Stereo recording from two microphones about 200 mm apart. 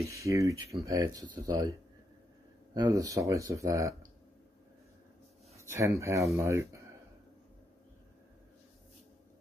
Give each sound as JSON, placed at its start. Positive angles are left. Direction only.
{"t": 0.0, "sound": "speech", "side_deg": -15}
{"t": 2.7, "sound": "speech", "side_deg": -20}
{"t": 5.6, "sound": "speech", "side_deg": -15}